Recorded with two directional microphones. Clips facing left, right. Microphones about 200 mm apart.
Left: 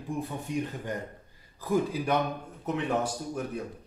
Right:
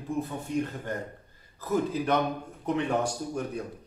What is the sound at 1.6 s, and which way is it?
A man's voice, 10° left (ahead or behind).